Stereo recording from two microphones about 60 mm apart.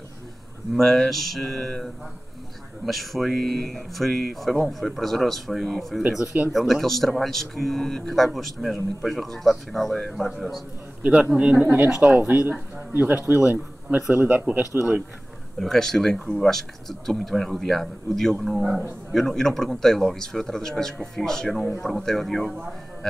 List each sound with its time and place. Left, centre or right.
0.7 s speech: centre
11.0 s a man's voice: right
11.6 s a man's voice: right
15.6 s speech: centre